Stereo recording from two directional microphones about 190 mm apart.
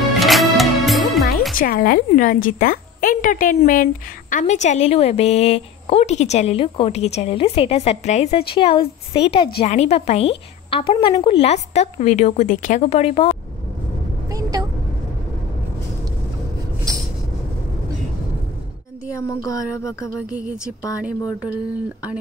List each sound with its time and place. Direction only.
0.2 s music: centre (ahead or behind)
1.5 s a woman's voice: 50° left (ahead or behind); by 13.4 s 30° left (ahead or behind)
14.3 s vehicle: 20° right (ahead or behind)
16.9 s vehicle: 15° right (ahead or behind)
19.1 s a sound: 15° left (ahead or behind)
20.2 s speech: 5° right (ahead or behind)